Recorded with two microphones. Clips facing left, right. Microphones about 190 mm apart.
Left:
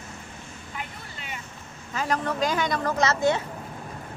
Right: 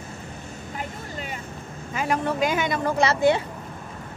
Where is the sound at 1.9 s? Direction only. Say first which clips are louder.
Right 2 dB; 10° right (ahead or behind).